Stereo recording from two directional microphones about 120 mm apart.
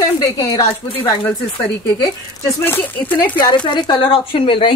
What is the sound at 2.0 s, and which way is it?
Speech, 20° left (ahead or behind).